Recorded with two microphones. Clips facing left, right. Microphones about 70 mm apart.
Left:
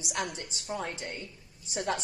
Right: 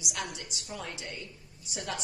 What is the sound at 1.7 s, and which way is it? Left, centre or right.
Speech, left.